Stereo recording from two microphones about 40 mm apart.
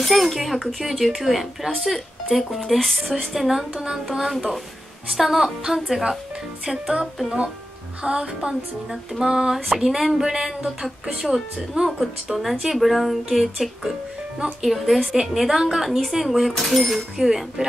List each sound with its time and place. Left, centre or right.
0.0 s speech: centre
6.6 s music: centre
9.2 s speech: centre